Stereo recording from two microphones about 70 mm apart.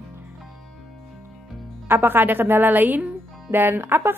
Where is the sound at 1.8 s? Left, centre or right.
Right.